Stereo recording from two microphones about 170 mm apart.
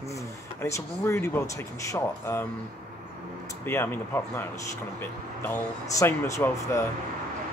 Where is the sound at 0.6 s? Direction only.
15° left (ahead or behind).